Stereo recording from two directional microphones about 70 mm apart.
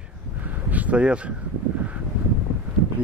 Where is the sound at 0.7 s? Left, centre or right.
Right.